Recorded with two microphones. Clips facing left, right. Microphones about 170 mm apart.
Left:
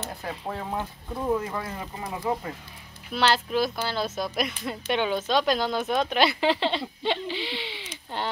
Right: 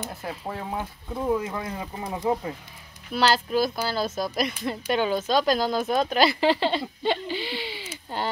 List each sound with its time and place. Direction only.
0.0 s speech: 5° right (ahead or behind)
1.6 s speech: 20° right (ahead or behind)
3.2 s speech: centre (ahead or behind)